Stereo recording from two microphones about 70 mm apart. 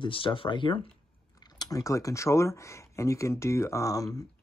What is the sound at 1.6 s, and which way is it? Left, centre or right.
Speech, left.